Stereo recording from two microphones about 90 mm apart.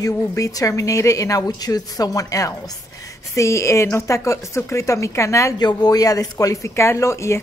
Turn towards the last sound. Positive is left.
turn(degrees=30)  # may be behind; listen again after turning